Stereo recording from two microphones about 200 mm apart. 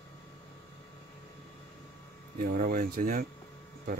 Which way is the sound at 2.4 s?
45° right (ahead or behind).